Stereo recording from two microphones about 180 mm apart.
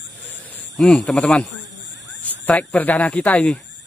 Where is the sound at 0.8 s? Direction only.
5° left (ahead or behind).